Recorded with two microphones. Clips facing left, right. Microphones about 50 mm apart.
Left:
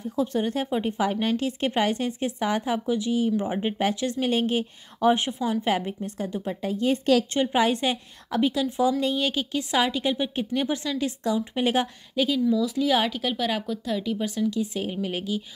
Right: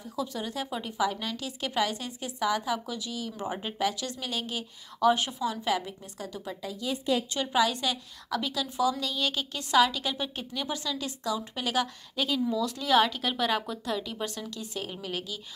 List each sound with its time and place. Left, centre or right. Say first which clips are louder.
0.0 s a woman's voice: left 8 dB; left
12.4 s speech: left 6 dB; centre
12.7 s speech: left 1 dB; centre
14.5 s a woman's voice: left 9 dB; centre